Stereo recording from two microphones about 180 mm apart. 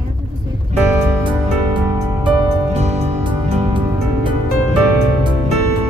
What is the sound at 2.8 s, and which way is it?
Music, 40° right (ahead or behind).